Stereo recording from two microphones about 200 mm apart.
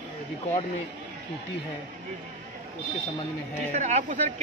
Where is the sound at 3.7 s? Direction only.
35° right (ahead or behind).